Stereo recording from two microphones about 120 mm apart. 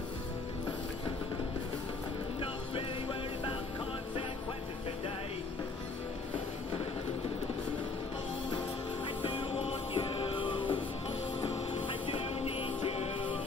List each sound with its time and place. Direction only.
2.7 s music: 40° left (ahead or behind)
9.0 s music: 45° left (ahead or behind)